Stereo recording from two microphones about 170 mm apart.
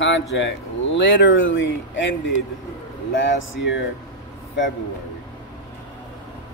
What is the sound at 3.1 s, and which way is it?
Music, 90° left.